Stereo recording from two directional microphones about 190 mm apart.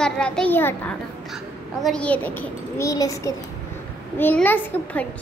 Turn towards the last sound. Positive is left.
turn(degrees=10)  # may be behind; listen again after turning